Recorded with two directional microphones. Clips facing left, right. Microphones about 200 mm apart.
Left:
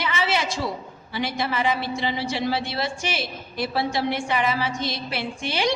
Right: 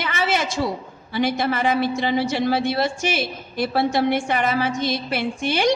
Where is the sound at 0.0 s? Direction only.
50° right (ahead or behind).